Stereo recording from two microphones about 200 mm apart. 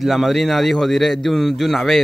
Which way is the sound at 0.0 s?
Centre (ahead or behind).